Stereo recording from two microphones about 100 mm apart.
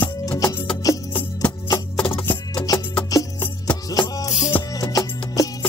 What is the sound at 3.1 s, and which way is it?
Music, 35° left (ahead or behind).